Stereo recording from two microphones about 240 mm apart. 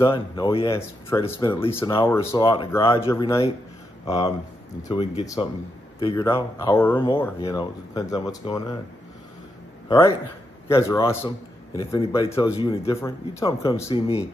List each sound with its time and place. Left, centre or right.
0.0 s a man's voice: left
9.8 s a man's voice: centre
12.9 s a man's voice: centre
13.8 s speech: left